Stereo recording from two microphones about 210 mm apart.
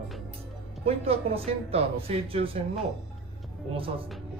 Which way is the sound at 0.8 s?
30° right (ahead or behind).